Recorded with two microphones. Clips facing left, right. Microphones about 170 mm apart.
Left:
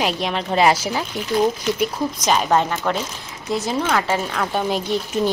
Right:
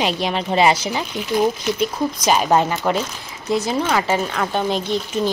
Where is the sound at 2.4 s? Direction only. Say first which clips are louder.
Right 2 dB; 15° right (ahead or behind).